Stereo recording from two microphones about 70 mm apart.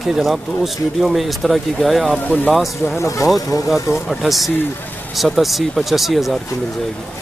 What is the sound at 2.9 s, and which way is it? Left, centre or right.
Speech, left.